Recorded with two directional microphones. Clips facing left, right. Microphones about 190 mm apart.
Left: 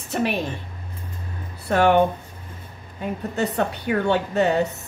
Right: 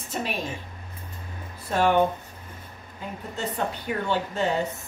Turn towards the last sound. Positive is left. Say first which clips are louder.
# left 5 dB
turn(degrees=70)  # may be behind; listen again after turning